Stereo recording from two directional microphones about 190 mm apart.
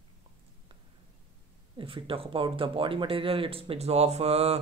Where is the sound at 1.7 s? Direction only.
30° right (ahead or behind).